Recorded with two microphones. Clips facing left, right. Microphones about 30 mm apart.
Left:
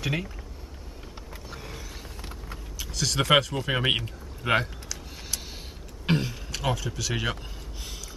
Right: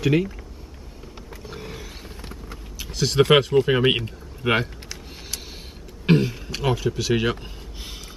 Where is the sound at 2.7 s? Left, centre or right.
Centre.